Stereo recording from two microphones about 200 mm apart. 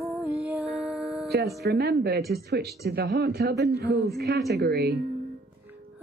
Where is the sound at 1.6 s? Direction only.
55° right (ahead or behind).